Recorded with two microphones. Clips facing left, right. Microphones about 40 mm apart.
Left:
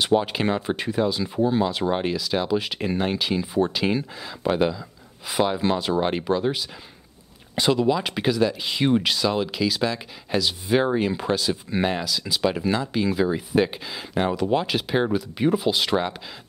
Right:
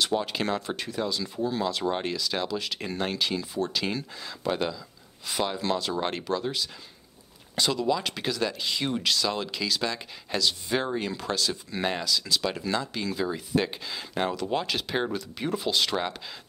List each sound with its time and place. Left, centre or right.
0.0 s speech: left
2.5 s speech: centre